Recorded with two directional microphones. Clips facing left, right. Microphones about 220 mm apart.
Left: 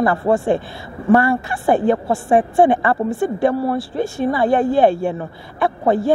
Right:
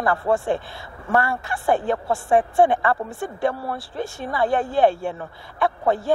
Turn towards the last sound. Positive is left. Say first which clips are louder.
# left 5 dB
turn(degrees=10)  # may be behind; listen again after turning